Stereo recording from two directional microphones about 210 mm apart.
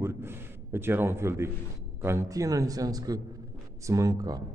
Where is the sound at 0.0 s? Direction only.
10° right (ahead or behind).